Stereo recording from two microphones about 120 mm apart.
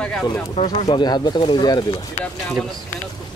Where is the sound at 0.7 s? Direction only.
35° left (ahead or behind).